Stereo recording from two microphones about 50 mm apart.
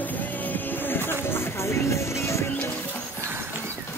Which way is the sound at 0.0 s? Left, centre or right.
Left.